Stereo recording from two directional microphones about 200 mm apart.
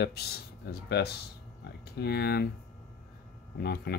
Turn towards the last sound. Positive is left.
turn(degrees=55)  # may be behind; listen again after turning